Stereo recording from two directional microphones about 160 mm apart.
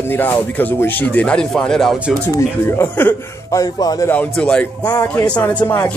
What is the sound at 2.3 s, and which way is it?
Speech, 15° left (ahead or behind).